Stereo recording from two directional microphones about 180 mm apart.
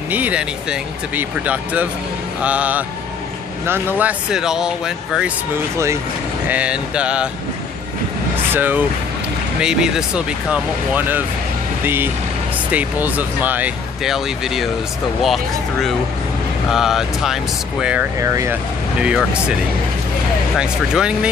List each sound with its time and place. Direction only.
0.1 s speech: 10° right (ahead or behind)
6.5 s speech: 5° right (ahead or behind)
8.5 s speech: 10° right (ahead or behind)
18.2 s speech: 15° right (ahead or behind)
18.9 s speech: 5° right (ahead or behind)
20.5 s speech: 5° right (ahead or behind)